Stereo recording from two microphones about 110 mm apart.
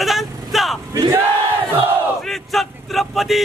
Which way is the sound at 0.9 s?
30° right (ahead or behind).